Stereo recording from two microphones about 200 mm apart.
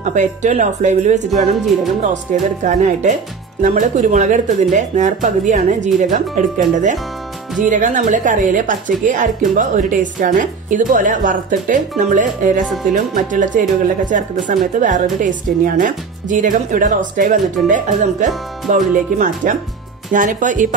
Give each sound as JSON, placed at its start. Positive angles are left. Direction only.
{"t": 0.0, "sound": "a woman's voice", "side_deg": -35}
{"t": 2.6, "sound": "a woman's voice", "side_deg": -35}
{"t": 12.6, "sound": "speech", "side_deg": 0}
{"t": 12.9, "sound": "a woman's voice", "side_deg": -40}